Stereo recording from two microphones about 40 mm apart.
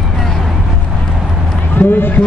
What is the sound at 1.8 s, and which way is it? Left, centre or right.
Run, left.